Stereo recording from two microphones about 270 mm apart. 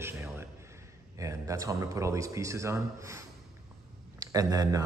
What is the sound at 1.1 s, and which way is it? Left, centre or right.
Speech, centre.